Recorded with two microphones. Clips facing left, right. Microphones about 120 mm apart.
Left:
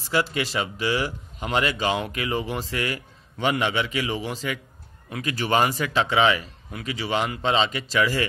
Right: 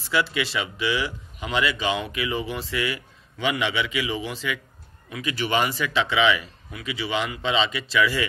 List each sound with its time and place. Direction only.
0.1 s a man's voice: 40° left (ahead or behind)